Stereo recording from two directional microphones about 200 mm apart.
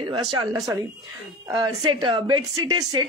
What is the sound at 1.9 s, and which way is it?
Speech, 20° right (ahead or behind).